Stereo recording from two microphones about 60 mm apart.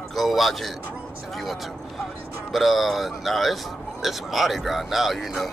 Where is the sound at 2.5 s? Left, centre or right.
Centre.